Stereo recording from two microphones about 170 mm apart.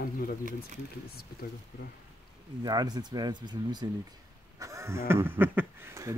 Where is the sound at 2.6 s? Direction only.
25° right (ahead or behind).